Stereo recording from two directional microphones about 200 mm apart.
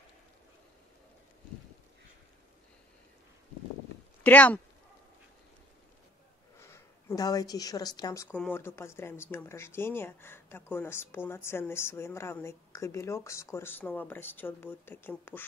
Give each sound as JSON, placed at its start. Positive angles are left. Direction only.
{"t": 4.2, "sound": "speech", "side_deg": 10}
{"t": 6.6, "sound": "a woman's voice", "side_deg": 15}